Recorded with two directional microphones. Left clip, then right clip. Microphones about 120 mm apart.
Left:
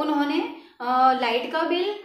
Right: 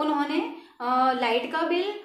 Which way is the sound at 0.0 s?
25° right (ahead or behind).